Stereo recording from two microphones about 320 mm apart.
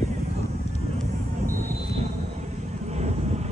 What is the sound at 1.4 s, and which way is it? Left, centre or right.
Vehicle, right.